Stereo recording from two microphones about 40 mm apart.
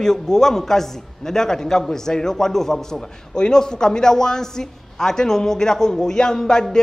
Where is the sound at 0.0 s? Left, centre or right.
Centre.